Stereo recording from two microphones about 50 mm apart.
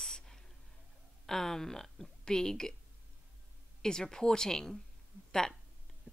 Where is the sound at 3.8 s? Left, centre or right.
Centre.